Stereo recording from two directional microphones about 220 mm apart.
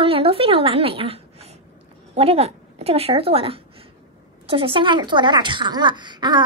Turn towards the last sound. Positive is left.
turn(degrees=-20)  # may be behind; listen again after turning